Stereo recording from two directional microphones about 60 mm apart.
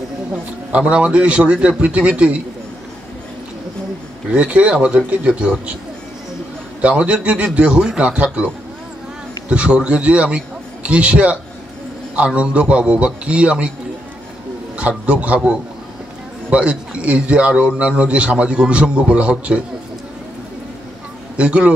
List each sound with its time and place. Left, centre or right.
0.7 s a man's voice: centre
4.3 s a man's voice: right
6.8 s a man's voice: right
9.5 s a man's voice: centre
14.8 s a man's voice: right
21.4 s a man's voice: centre